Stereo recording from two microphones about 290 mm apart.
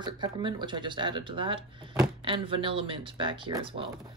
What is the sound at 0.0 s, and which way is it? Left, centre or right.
Speech, centre.